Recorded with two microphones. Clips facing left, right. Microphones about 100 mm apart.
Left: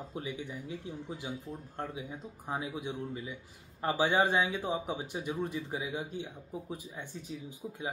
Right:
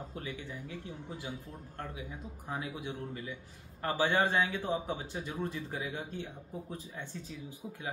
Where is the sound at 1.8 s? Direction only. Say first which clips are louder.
Left 2 dB; 20° left (ahead or behind).